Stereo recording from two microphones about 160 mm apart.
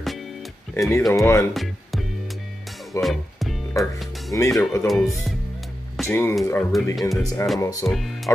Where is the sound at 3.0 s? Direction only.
Centre (ahead or behind).